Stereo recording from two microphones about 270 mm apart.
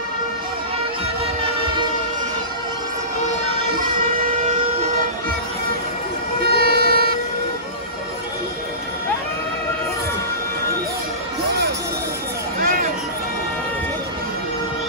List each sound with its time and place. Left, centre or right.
1.4 s train: centre
6.5 s music: right
12.5 s a sound: right